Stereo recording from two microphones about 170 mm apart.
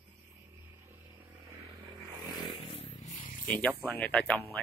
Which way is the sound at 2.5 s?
30° left (ahead or behind).